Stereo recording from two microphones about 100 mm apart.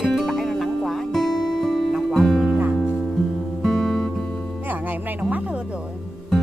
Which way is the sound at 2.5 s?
15° right (ahead or behind).